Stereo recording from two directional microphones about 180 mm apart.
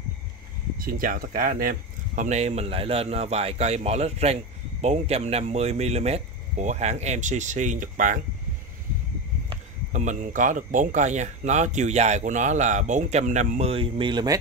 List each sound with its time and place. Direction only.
0.7 s speech: 50° right (ahead or behind)
9.9 s speech: 45° right (ahead or behind); by 14.4 s 20° right (ahead or behind)